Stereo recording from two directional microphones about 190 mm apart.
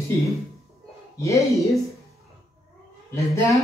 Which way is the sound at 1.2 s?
15° left (ahead or behind).